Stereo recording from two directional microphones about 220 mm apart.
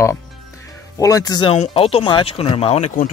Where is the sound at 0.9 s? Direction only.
15° left (ahead or behind).